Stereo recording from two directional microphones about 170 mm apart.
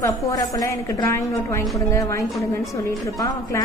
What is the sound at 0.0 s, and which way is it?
A woman's voice, 20° left (ahead or behind).